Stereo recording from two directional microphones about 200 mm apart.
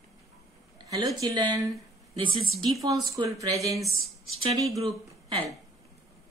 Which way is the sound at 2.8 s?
15° right (ahead or behind).